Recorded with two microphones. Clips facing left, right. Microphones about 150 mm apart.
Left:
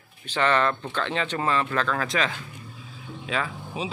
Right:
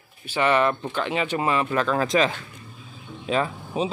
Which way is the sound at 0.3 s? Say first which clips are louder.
Right 2 dB; 10° right (ahead or behind).